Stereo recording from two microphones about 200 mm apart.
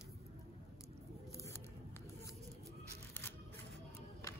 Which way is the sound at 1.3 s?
15° left (ahead or behind).